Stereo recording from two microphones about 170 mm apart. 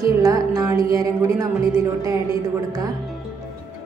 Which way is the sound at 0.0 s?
20° right (ahead or behind).